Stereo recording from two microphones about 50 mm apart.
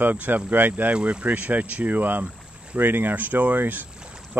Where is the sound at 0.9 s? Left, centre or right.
Right.